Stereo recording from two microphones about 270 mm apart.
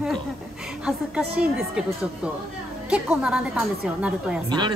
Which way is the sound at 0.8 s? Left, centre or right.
Centre.